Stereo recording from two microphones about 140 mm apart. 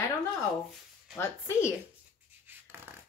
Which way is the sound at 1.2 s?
20° left (ahead or behind).